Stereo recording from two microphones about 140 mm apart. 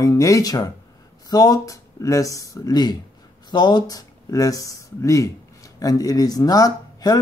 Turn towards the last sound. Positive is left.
turn(degrees=25)  # may be behind; listen again after turning